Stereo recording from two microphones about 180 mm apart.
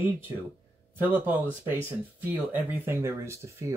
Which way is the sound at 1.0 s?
10° right (ahead or behind).